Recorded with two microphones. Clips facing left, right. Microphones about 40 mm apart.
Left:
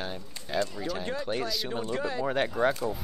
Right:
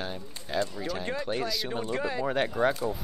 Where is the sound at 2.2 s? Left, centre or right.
Centre.